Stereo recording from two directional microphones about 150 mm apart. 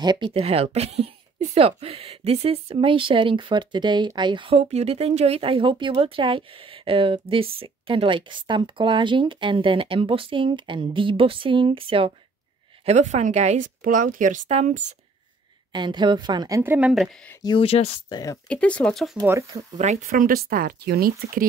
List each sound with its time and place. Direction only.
0.0 s speech: 30° right (ahead or behind)
12.8 s a woman's voice: 50° right (ahead or behind)
15.7 s a woman's voice: 30° right (ahead or behind); by 16.9 s 15° right (ahead or behind)
16.9 s speech: centre (ahead or behind)
17.4 s speech: 35° left (ahead or behind)
18.1 s speech: 20° left (ahead or behind)
18.5 s speech: 10° left (ahead or behind)
19.2 s a woman's voice: 20° right (ahead or behind)
20.1 s speech: 70° right (ahead or behind); by 21.5 s 85° right